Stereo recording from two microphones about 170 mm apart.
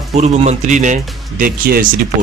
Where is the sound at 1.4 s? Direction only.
55° right (ahead or behind).